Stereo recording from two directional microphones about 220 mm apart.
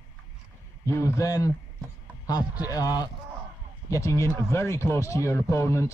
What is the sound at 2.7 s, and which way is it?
Speech, 15° left (ahead or behind).